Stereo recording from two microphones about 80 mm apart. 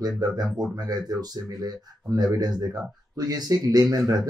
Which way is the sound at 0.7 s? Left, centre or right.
Right.